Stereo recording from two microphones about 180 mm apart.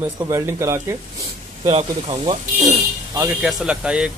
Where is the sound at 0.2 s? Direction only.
15° right (ahead or behind).